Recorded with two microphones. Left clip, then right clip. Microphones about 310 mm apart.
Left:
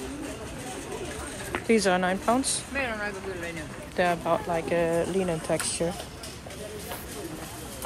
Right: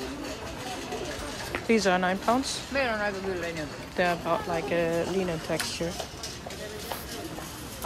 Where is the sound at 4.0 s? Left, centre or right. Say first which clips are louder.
Left 1 dB; centre.